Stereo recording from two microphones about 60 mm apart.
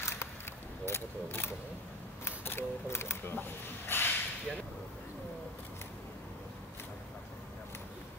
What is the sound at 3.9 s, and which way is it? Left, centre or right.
Whip, left.